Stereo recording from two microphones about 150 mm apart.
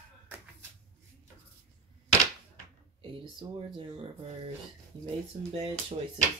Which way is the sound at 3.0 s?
35° right (ahead or behind).